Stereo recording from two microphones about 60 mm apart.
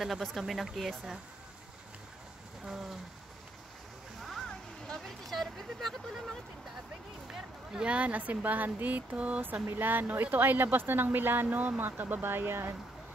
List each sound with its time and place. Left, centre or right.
0.0 s speech: centre
2.6 s a sound: centre
4.5 s vehicle: centre
7.2 s speech: centre
9.7 s speech: right